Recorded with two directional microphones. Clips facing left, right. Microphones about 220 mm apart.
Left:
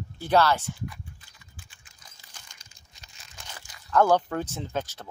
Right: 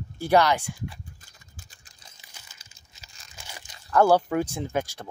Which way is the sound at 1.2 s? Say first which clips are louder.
Right 1 dB; 45° right (ahead or behind).